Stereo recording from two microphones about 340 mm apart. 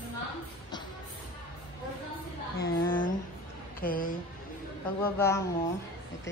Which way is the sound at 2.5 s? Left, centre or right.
Centre.